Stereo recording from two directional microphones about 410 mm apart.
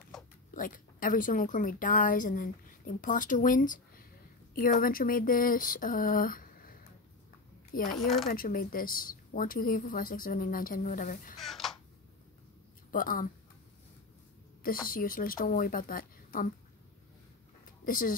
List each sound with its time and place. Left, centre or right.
0.6 s a woman's voice: centre
8.0 s speech: centre
8.3 s a woman's voice: left
11.3 s a sound: centre
12.9 s a woman's voice: centre
14.9 s speech: left
17.8 s a woman's voice: centre